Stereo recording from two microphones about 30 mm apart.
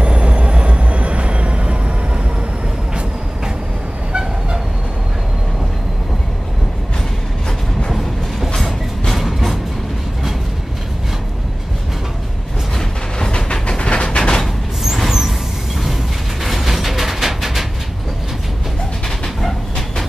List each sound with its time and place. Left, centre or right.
0.0 s train: right
4.1 s vehicle: right
9.1 s music: centre
13.5 s train: left
14.1 s a sound: left
15.0 s vehicle: centre
16.4 s a sound: centre
19.0 s dog: centre